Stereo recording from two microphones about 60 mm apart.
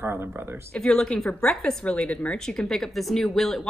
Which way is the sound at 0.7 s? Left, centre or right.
Centre.